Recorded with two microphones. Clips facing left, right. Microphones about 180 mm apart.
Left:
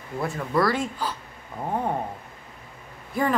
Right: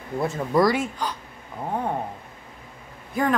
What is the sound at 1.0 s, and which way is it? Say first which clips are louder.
Speech: right 1 dB; 5° left (ahead or behind).